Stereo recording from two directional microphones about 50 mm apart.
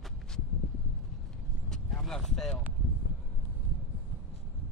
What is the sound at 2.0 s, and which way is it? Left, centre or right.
Speech, centre.